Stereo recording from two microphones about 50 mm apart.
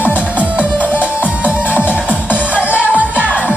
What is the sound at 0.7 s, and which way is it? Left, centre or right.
Music, left.